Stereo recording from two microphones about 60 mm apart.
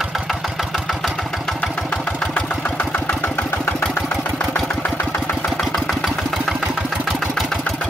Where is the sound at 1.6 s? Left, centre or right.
Centre.